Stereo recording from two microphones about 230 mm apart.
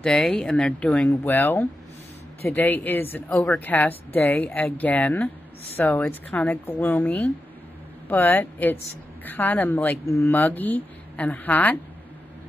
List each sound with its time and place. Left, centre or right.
0.0 s a woman's voice: centre